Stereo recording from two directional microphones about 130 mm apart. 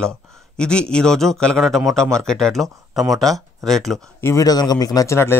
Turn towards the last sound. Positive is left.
turn(degrees=20)  # may be behind; listen again after turning